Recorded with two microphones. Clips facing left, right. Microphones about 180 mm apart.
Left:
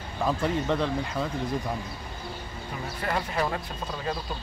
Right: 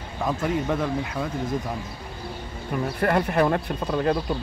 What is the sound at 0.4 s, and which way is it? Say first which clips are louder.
Speech: right 3 dB; 5° right (ahead or behind).